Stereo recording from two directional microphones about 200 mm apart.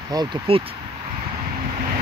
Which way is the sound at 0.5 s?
30° right (ahead or behind).